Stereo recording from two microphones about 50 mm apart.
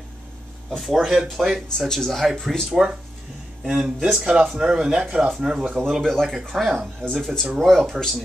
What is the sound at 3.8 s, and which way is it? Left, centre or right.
Speech, centre.